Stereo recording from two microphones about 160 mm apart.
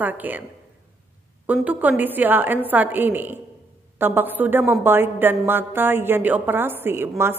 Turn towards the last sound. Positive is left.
turn(degrees=-15)  # may be behind; listen again after turning